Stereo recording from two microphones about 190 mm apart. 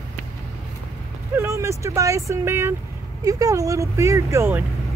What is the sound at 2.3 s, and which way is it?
Speech, 15° right (ahead or behind).